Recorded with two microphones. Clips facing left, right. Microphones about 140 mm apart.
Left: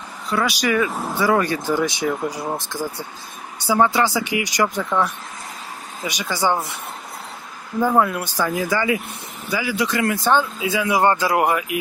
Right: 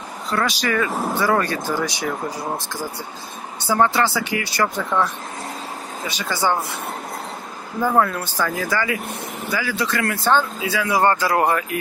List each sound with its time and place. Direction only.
0.3 s speech: 10° left (ahead or behind)
3.5 s speech: 10° left (ahead or behind)
7.9 s speech: 10° left (ahead or behind)